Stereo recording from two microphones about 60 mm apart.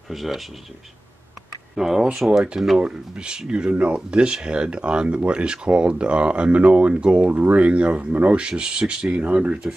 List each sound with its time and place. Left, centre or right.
0.1 s speech: centre
1.8 s speech: centre